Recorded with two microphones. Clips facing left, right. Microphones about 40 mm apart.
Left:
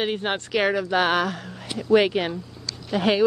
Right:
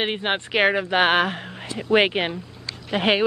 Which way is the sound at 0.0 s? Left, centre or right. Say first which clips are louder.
Right 1 dB; right.